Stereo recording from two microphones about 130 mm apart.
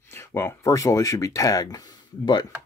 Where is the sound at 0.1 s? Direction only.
20° left (ahead or behind).